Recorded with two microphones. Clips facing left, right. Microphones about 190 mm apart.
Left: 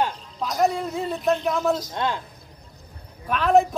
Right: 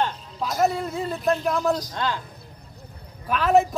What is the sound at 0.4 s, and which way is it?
Speech, centre (ahead or behind).